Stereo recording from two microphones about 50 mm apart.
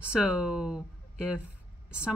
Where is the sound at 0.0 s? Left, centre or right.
Right.